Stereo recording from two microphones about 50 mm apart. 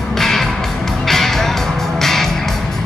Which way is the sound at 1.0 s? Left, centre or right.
Centre.